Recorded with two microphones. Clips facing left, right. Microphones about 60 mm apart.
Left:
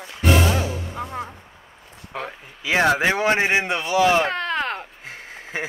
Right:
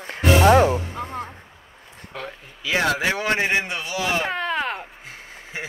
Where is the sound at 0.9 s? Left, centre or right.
Centre; by 4.2 s left.